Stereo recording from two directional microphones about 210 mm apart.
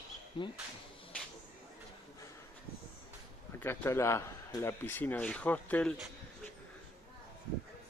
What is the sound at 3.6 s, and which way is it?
Speech, 10° left (ahead or behind).